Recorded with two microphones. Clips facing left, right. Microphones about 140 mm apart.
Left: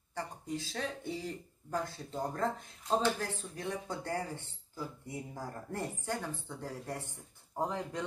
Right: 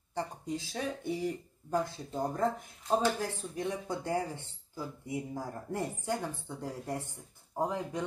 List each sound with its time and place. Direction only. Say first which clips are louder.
0.1 s speech: right 3 dB; 20° right (ahead or behind)